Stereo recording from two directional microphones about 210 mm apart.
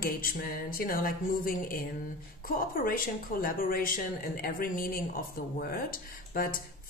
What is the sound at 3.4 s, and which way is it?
A woman's voice, 45° left (ahead or behind).